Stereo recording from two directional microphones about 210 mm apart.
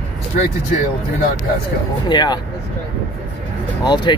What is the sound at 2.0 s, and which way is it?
Speech, 20° left (ahead or behind).